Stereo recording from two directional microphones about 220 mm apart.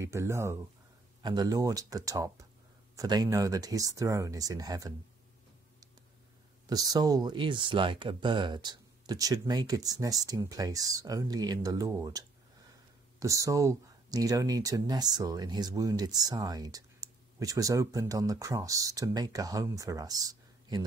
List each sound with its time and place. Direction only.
0.0 s speech: 10° right (ahead or behind)
6.7 s speech: 15° right (ahead or behind)